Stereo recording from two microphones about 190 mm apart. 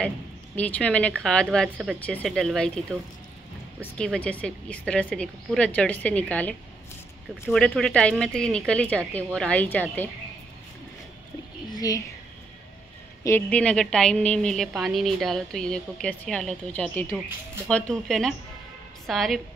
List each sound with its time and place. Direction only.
0.6 s a woman's voice: 5° left (ahead or behind)
3.8 s a woman's voice: 5° left (ahead or behind)
11.7 s a sound: 20° left (ahead or behind)
13.2 s a woman's voice: 10° left (ahead or behind)